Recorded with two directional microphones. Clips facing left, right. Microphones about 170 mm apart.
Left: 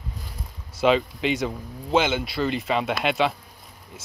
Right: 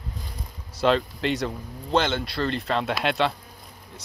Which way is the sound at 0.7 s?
5° left (ahead or behind).